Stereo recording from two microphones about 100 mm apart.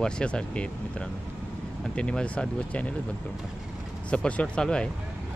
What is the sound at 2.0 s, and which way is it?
Speech, 10° left (ahead or behind).